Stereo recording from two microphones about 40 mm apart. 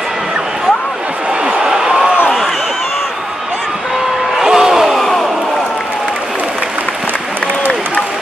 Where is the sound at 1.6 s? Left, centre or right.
Centre.